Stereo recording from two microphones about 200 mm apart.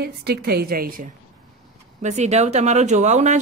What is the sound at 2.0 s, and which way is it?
Speech, 35° right (ahead or behind).